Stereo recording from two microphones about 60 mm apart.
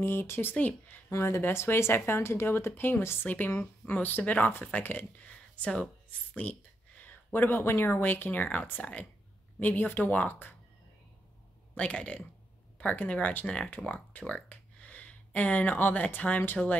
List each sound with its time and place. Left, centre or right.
0.0 s speech: left
1.1 s speech: left
5.3 s a sound: centre
6.4 s speech: left
7.3 s speech: left
11.7 s speech: left